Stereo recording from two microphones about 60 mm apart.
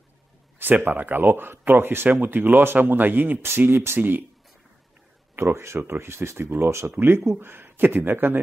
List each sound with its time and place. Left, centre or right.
0.6 s speech: right
5.3 s speech: right